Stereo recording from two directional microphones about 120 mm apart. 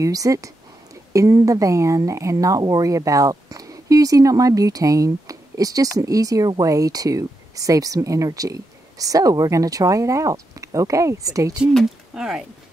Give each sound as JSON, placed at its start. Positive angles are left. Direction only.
{"t": 0.0, "sound": "speech", "side_deg": -30}
{"t": 11.7, "sound": "speech", "side_deg": 0}